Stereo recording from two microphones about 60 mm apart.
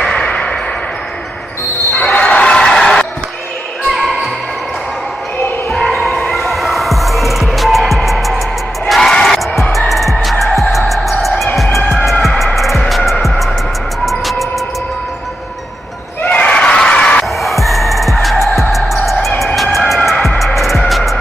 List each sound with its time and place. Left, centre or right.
0.0 s a sound: centre
2.0 s basketball bounce: left
3.9 s basketball bounce: centre
5.7 s a sound: centre
6.3 s music: centre
16.2 s screaming: left
17.4 s music: centre